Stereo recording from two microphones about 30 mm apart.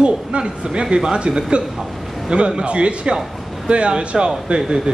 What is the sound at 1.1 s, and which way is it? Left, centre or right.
A man's voice, right.